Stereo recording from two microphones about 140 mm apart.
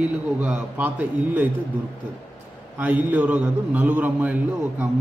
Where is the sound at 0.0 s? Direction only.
10° right (ahead or behind).